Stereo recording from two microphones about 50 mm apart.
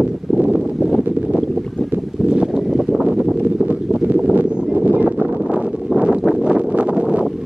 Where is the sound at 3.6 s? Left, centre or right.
Right.